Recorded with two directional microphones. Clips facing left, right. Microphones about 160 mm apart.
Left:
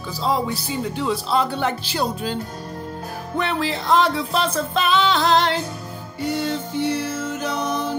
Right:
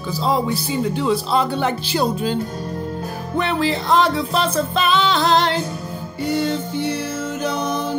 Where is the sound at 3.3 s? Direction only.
10° right (ahead or behind).